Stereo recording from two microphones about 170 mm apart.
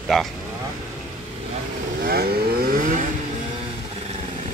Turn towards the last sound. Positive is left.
turn(degrees=-50)  # may be behind; listen again after turning